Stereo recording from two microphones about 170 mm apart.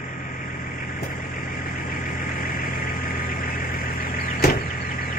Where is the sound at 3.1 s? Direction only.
60° left (ahead or behind).